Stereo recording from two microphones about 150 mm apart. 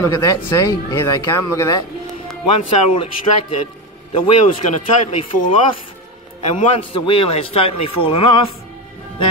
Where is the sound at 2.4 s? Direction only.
35° left (ahead or behind).